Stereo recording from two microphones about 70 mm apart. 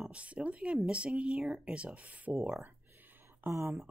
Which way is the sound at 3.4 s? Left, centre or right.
Right.